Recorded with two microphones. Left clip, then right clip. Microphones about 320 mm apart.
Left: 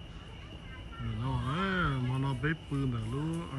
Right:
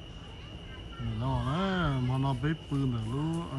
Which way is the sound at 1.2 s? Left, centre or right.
Centre.